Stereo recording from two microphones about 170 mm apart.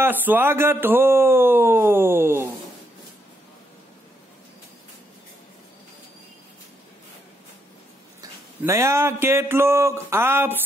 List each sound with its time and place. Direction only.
0.0 s speech: 10° right (ahead or behind)
8.2 s speech: 15° right (ahead or behind)